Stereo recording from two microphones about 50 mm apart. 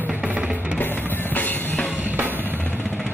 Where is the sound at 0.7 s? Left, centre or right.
Left.